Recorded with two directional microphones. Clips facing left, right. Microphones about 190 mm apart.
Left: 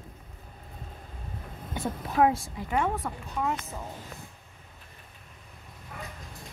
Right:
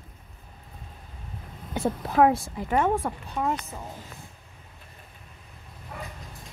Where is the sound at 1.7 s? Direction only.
65° right (ahead or behind).